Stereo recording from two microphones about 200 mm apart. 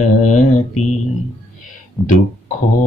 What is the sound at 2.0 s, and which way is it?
Speech, 5° left (ahead or behind).